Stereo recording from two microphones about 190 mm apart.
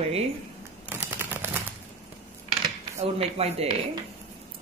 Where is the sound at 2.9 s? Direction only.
30° right (ahead or behind).